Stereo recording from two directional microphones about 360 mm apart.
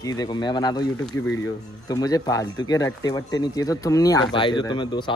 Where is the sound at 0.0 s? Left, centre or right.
Centre.